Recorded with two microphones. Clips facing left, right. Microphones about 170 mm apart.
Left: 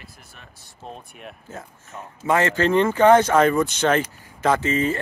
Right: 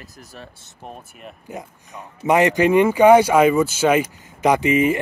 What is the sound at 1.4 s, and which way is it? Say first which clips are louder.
Speech: right 4 dB; 15° right (ahead or behind).